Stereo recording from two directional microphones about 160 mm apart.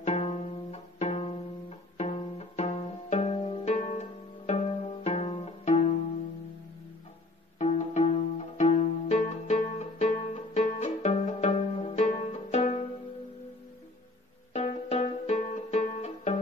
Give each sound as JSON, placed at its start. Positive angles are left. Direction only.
{"t": 0.0, "sound": "pizzicato", "side_deg": 40}
{"t": 7.5, "sound": "pizzicato", "side_deg": 45}
{"t": 14.5, "sound": "music", "side_deg": 40}